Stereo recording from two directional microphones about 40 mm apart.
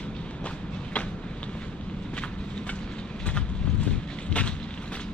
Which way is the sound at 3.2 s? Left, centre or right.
Left.